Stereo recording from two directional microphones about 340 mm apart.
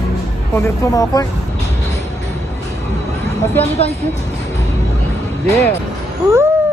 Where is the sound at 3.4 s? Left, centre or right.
Centre.